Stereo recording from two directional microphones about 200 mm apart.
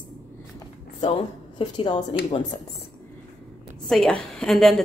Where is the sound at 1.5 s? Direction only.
20° left (ahead or behind).